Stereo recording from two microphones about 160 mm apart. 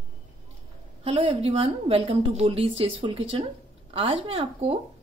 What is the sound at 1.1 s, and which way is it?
A woman's voice, 40° right (ahead or behind).